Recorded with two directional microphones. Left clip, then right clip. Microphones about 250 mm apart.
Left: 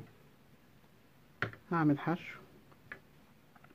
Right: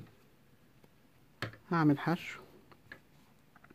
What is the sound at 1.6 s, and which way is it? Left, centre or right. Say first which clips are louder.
Speech: right 2 dB; centre.